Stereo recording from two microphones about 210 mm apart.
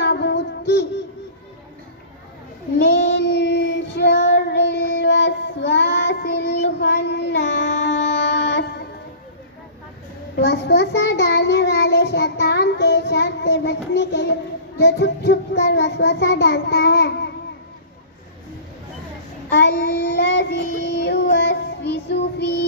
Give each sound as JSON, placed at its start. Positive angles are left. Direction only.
{"t": 0.0, "sound": "child singing", "side_deg": 55}
{"t": 2.8, "sound": "child singing", "side_deg": 55}
{"t": 10.3, "sound": "child singing", "side_deg": 55}
{"t": 19.5, "sound": "child singing", "side_deg": 55}